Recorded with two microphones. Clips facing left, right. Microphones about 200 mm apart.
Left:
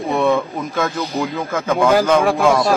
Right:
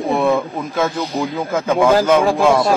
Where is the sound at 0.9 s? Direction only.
30° right (ahead or behind).